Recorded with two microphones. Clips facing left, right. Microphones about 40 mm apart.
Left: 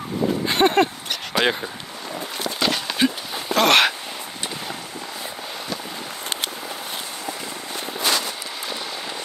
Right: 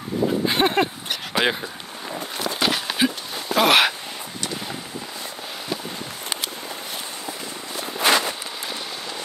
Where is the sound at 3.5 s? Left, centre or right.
Centre.